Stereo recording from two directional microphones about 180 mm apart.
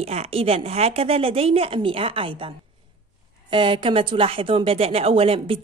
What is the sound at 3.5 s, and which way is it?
Speech, 30° right (ahead or behind).